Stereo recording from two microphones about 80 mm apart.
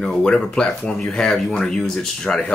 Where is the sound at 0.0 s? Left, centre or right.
Centre.